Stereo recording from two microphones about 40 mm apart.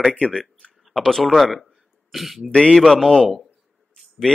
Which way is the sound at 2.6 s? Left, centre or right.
Centre.